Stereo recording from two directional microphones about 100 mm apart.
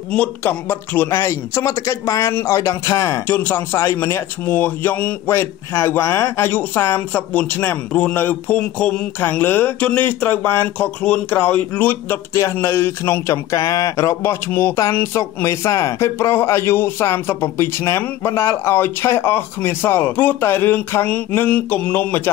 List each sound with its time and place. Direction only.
0.1 s speech: 15° left (ahead or behind)